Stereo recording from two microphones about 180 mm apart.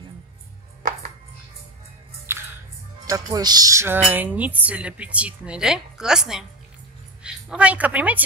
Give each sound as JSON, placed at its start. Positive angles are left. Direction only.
{"t": 2.3, "sound": "music", "side_deg": -15}
{"t": 3.1, "sound": "a woman's voice", "side_deg": -20}